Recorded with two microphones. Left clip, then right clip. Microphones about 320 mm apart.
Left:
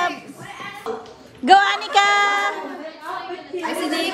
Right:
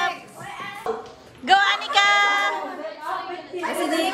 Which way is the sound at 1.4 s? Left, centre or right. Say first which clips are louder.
Left 4 dB; centre.